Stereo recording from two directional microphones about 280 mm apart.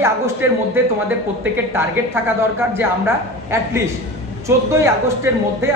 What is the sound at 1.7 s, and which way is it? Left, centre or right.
A man's voice, centre.